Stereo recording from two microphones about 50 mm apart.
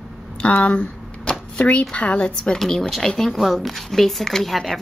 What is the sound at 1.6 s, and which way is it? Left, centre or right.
Speech, left.